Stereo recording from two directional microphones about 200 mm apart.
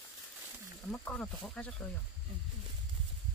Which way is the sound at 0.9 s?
5° left (ahead or behind).